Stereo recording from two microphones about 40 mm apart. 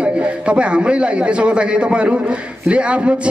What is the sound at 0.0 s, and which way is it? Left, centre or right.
A man's voice, right.